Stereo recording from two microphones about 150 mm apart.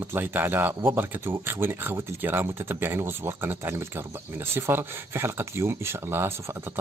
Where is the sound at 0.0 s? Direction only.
15° right (ahead or behind).